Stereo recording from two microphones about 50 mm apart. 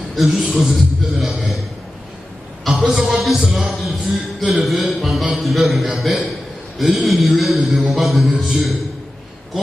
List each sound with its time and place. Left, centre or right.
0.1 s a man's voice: centre
2.8 s a man's voice: centre